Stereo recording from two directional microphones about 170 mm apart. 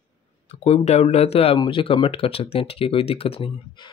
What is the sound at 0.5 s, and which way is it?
Speech, 40° left (ahead or behind).